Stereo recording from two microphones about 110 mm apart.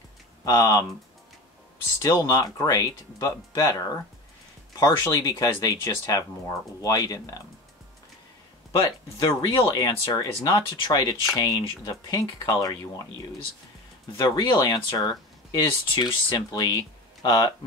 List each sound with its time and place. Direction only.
0.5 s speech: 35° left (ahead or behind)
2.0 s speech: 30° left (ahead or behind)
8.7 s speech: 35° left (ahead or behind)
14.1 s speech: 40° left (ahead or behind)